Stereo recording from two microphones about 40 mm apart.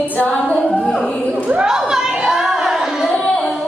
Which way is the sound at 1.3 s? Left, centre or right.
Right.